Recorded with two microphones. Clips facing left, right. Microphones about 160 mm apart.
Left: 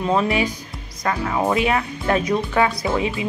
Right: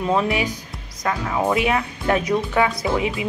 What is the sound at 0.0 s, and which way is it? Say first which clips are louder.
Speech: left 1 dB; 15° right (ahead or behind).